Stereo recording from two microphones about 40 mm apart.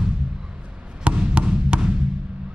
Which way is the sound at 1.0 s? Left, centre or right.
Right.